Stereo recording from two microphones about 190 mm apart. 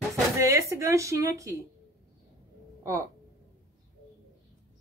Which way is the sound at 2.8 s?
15° right (ahead or behind).